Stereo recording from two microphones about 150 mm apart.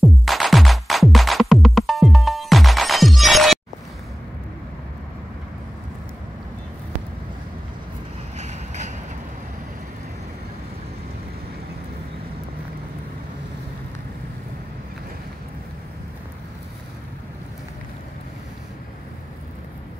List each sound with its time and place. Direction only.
0.0 s music: centre (ahead or behind)
8.4 s vehicle: 50° right (ahead or behind)